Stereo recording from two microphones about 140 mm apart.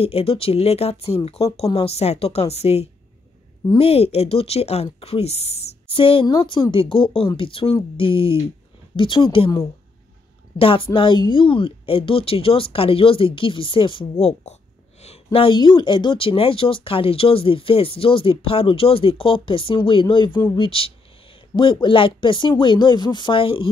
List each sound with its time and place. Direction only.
0.0 s speech: 45° left (ahead or behind)
10.6 s speech: 40° left (ahead or behind)
15.3 s speech: 35° left (ahead or behind)